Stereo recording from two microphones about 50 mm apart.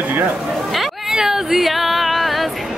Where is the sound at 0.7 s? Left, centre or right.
Centre.